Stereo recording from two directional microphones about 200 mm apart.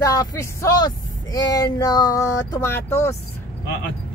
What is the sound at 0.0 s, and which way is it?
Speech, 15° left (ahead or behind).